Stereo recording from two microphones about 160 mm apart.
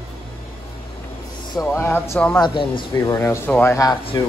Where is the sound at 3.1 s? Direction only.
20° left (ahead or behind).